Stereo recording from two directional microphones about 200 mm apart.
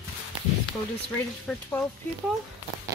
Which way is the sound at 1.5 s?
5° left (ahead or behind).